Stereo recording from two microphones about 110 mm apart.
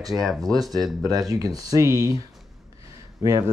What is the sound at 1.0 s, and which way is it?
Speech, 35° right (ahead or behind).